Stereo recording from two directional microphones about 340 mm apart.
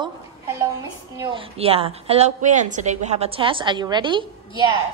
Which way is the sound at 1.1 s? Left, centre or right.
Centre.